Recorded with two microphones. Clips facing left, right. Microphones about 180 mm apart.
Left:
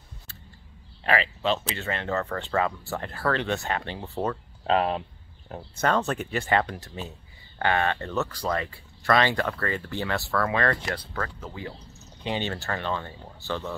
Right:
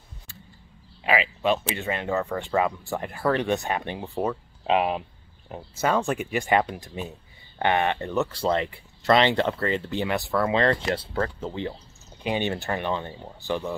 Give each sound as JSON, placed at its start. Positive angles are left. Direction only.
{"t": 1.0, "sound": "speech", "side_deg": -10}
{"t": 12.2, "sound": "speech", "side_deg": -15}